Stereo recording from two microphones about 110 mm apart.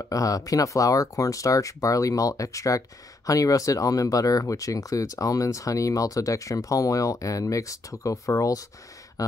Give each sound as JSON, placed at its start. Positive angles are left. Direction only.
{"t": 0.0, "sound": "speech", "side_deg": 30}